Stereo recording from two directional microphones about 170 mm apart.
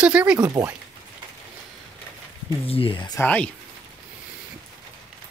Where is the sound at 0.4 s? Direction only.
20° right (ahead or behind).